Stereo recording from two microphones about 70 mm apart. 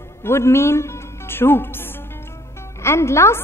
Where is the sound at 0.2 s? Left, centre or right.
Left.